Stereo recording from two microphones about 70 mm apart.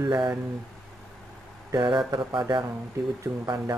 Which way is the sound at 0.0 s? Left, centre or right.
Right.